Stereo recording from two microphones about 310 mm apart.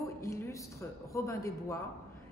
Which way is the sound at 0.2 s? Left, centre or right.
Centre.